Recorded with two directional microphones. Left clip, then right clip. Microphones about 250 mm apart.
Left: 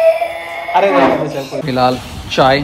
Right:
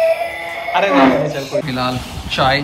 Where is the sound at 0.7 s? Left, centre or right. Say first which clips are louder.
Left 2 dB; centre.